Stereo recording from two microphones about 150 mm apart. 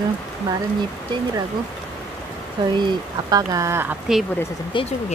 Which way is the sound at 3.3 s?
20° right (ahead or behind).